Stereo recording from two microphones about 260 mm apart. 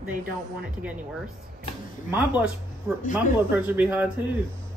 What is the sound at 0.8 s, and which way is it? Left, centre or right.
Speech, centre.